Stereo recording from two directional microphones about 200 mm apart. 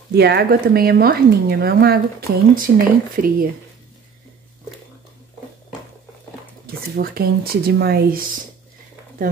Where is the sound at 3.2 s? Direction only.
45° right (ahead or behind).